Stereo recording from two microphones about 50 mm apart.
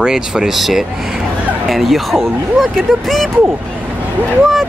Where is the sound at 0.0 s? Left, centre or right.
Centre.